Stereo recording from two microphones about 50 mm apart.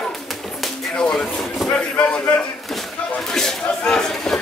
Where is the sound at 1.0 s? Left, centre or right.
Centre.